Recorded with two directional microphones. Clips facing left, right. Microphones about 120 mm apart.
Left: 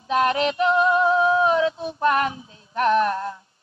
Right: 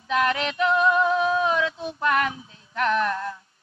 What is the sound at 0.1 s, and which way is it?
Female singing, 30° left (ahead or behind).